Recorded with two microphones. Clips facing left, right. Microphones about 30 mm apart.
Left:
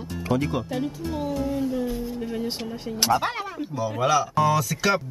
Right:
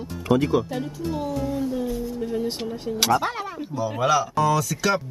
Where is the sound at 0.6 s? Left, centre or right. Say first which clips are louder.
Even; left.